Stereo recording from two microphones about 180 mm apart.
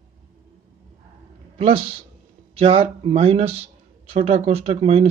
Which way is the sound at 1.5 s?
30° right (ahead or behind).